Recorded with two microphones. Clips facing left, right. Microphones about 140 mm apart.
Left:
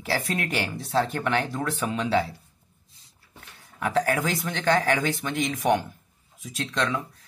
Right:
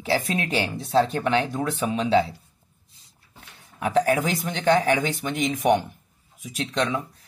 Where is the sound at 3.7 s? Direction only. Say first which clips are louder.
Right 3 dB; 20° right (ahead or behind).